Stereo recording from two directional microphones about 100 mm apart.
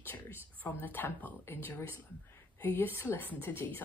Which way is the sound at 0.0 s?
20° left (ahead or behind).